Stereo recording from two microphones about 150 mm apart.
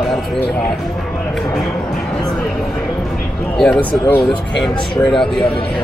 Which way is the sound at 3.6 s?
10° left (ahead or behind).